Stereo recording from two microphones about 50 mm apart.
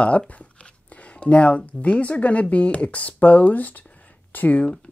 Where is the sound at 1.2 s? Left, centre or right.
Left.